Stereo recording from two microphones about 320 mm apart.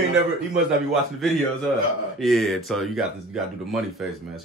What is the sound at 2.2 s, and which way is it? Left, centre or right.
Speech, centre.